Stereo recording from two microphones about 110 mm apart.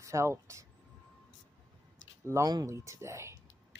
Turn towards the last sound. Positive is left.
turn(degrees=-25)  # may be behind; listen again after turning